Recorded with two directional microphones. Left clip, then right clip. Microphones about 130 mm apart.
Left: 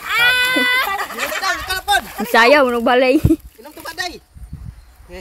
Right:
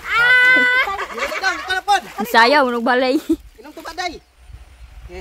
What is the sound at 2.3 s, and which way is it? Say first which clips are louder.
Speech: left 2 dB; 10° left (ahead or behind).